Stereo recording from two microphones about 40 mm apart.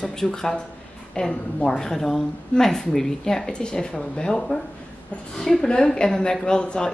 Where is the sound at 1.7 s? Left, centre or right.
Centre.